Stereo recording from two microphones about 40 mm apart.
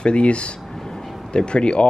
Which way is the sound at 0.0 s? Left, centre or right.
Left.